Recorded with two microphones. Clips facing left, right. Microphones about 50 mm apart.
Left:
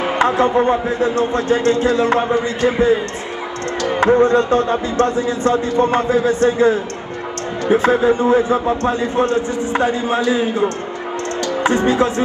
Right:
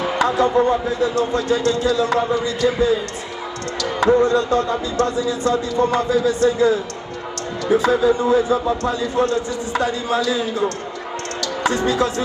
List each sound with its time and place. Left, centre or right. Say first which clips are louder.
0.0 s a man's voice: left 2 dB; left